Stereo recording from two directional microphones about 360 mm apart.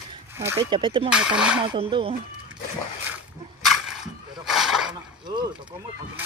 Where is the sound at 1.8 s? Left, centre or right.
Centre.